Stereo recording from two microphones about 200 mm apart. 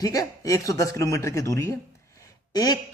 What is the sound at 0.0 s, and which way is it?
Speech, 20° left (ahead or behind).